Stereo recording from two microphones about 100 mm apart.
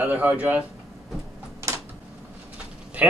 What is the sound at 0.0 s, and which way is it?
Speech, 15° right (ahead or behind).